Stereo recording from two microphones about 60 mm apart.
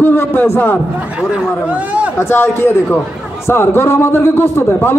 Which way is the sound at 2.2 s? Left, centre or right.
Left.